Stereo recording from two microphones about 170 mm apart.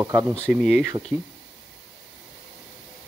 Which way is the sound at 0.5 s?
Centre (ahead or behind).